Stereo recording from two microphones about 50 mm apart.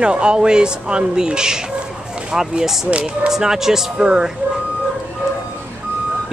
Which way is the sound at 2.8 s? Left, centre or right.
Right.